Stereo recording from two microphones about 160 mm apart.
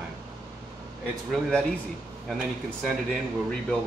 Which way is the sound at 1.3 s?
5° left (ahead or behind).